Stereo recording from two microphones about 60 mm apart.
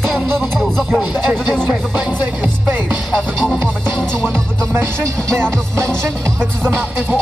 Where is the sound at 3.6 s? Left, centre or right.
Centre.